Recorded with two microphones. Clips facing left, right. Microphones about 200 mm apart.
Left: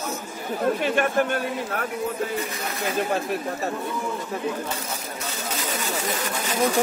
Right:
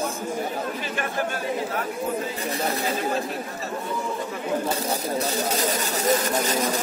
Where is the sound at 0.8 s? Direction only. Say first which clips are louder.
Left 6 dB; 60° left (ahead or behind).